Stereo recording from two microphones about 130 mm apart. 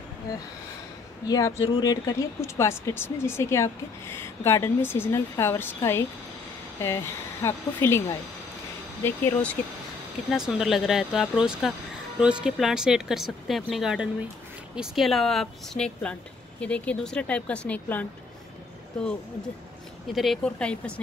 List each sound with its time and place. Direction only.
1.2 s speech: 30° left (ahead or behind); by 9.6 s 10° left (ahead or behind)
10.3 s speech: 5° right (ahead or behind); by 18.0 s 10° left (ahead or behind)
20.2 s speech: 5° left (ahead or behind)